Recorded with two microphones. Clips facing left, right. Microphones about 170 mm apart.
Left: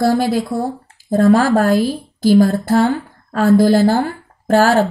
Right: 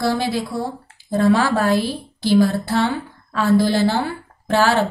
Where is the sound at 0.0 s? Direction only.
45° left (ahead or behind).